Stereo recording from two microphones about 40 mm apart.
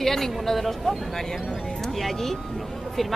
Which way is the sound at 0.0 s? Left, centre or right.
Centre.